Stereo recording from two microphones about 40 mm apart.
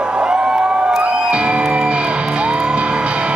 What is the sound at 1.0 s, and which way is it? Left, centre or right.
Music, right.